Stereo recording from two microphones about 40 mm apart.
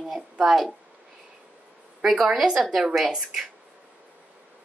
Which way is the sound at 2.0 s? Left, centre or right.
Centre.